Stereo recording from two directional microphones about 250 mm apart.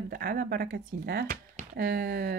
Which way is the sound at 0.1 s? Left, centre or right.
Right.